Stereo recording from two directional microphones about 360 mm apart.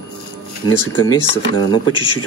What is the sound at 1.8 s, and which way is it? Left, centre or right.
Speech, left.